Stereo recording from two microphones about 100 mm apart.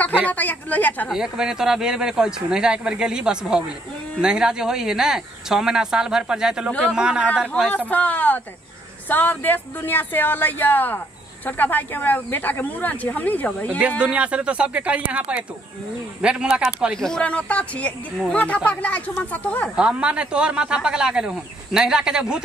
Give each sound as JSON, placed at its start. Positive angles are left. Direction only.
{"t": 0.3, "sound": "speech", "side_deg": 15}
{"t": 1.0, "sound": "speech", "side_deg": -5}
{"t": 7.9, "sound": "speech", "side_deg": 15}
{"t": 13.7, "sound": "speech", "side_deg": -15}
{"t": 16.9, "sound": "speech", "side_deg": 5}
{"t": 19.7, "sound": "speech", "side_deg": -10}